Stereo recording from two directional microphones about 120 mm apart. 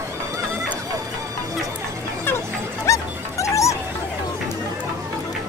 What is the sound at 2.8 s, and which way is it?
Dog, 25° left (ahead or behind).